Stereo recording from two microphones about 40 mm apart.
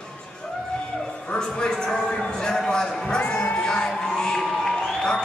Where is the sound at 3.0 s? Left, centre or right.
Left.